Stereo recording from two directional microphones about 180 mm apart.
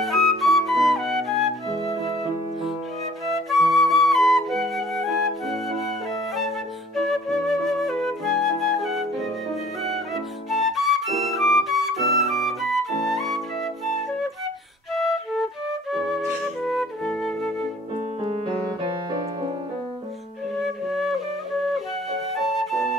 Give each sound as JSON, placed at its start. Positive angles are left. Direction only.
{"t": 0.0, "sound": "flute", "side_deg": 0}
{"t": 3.3, "sound": "flute", "side_deg": 0}
{"t": 7.0, "sound": "flute", "side_deg": 0}
{"t": 15.0, "sound": "flute", "side_deg": 0}
{"t": 20.5, "sound": "flute", "side_deg": 0}
{"t": 22.4, "sound": "flute", "side_deg": 0}